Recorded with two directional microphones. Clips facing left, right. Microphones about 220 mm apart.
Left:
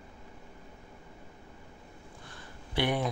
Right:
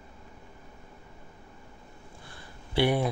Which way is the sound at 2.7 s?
10° right (ahead or behind).